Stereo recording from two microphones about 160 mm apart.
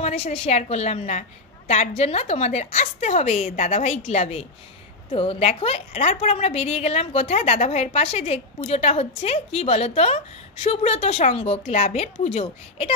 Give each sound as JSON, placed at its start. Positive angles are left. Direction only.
{"t": 0.0, "sound": "a woman's voice", "side_deg": 40}